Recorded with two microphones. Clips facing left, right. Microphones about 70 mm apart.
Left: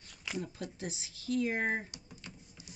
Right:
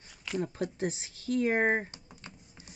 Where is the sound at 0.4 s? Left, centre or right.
Right.